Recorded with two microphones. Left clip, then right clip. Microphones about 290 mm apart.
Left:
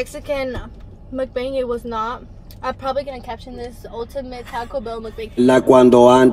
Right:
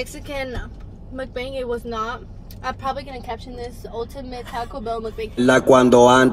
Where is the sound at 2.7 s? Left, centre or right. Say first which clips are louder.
Left 4 dB; centre.